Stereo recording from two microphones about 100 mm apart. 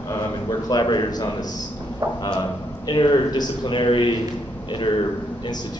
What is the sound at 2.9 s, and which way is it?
A man's voice, 50° left (ahead or behind).